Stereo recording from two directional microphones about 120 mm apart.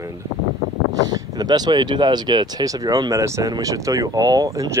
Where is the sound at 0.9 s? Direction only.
35° right (ahead or behind).